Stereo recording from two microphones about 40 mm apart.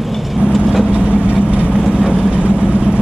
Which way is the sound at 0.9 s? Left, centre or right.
Right.